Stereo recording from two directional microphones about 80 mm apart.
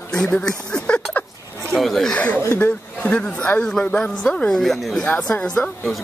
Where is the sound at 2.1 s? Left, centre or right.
Centre.